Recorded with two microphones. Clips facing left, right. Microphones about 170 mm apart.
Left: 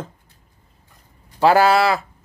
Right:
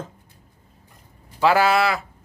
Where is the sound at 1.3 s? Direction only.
35° left (ahead or behind).